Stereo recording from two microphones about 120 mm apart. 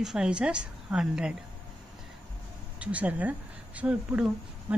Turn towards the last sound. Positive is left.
turn(degrees=-10)  # may be behind; listen again after turning